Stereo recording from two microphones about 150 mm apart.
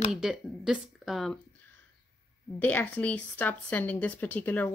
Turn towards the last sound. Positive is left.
turn(degrees=10)  # may be behind; listen again after turning